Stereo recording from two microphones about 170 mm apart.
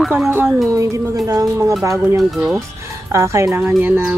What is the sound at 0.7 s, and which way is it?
Speech, 20° right (ahead or behind).